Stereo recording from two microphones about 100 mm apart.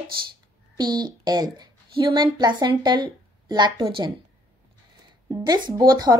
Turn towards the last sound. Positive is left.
turn(degrees=-40)  # may be behind; listen again after turning